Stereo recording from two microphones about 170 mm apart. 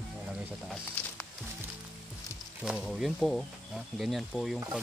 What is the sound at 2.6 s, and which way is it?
Speech, centre (ahead or behind).